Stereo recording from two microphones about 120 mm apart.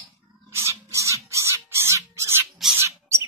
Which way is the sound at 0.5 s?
25° right (ahead or behind).